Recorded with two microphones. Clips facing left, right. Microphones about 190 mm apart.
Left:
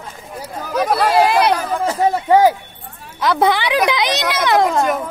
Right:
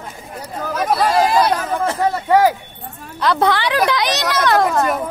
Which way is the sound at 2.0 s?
15° left (ahead or behind).